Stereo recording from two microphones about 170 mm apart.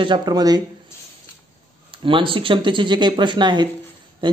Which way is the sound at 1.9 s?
30° right (ahead or behind).